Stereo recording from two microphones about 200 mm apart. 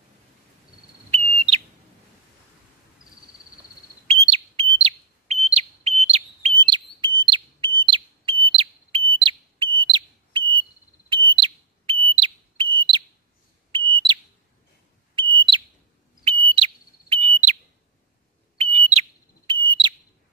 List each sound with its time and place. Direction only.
1.1 s bird: 30° right (ahead or behind)
4.1 s a sound: 30° right (ahead or behind)
4.7 s bird: 30° right (ahead or behind)
7.2 s alarm: 25° right (ahead or behind)
7.8 s bird: 25° right (ahead or behind)
12.7 s chirp: 25° right (ahead or behind)
13.7 s bird: 25° right (ahead or behind)
15.1 s bird: 25° right (ahead or behind)
16.3 s fire alarm: 25° right (ahead or behind)
18.6 s smoke detector: 30° right (ahead or behind)